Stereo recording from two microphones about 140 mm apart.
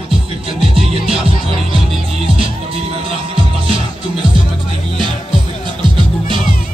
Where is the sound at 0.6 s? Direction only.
45° right (ahead or behind).